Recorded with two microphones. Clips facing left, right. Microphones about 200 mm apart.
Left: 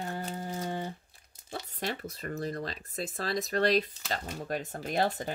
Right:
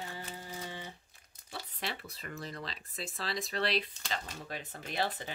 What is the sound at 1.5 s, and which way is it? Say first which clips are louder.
Speech: left 5 dB; 45° left (ahead or behind).